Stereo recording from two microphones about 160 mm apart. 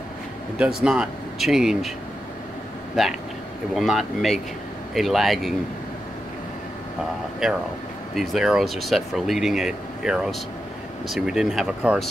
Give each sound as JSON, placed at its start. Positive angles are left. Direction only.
{"t": 0.6, "sound": "speech", "side_deg": -5}
{"t": 3.0, "sound": "speech", "side_deg": 0}
{"t": 8.1, "sound": "speech", "side_deg": 0}